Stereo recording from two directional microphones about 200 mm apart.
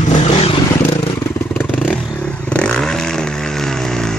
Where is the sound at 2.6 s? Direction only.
5° left (ahead or behind).